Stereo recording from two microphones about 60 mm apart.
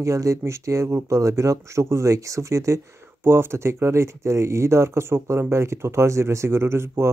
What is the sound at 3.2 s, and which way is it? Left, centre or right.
Speech, right.